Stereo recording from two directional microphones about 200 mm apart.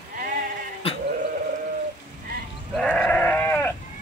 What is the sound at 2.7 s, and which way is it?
Sheep, centre (ahead or behind).